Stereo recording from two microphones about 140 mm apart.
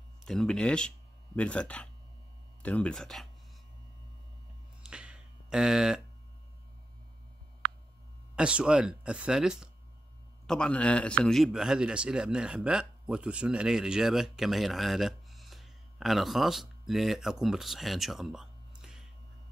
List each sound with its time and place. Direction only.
0.2 s speech: 5° left (ahead or behind)
4.8 s a sound: 5° right (ahead or behind)
8.4 s a man's voice: 5° right (ahead or behind)